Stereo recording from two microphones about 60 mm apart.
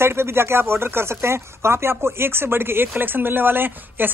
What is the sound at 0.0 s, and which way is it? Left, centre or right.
Speech, right.